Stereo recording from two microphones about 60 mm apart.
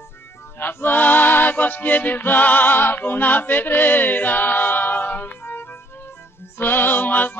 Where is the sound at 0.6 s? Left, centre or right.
Left.